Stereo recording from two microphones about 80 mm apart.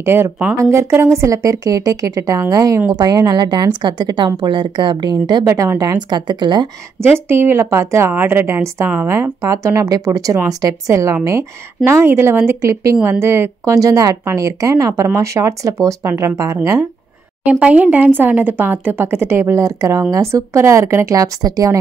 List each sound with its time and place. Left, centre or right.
0.0 s a woman's voice: right
2.9 s a woman's voice: right
5.4 s a woman's voice: right
7.0 s speech: right
8.1 s a woman's voice: right
17.5 s speech: centre; by 21.6 s right